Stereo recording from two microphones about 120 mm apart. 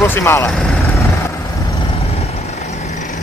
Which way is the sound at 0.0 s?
20° left (ahead or behind).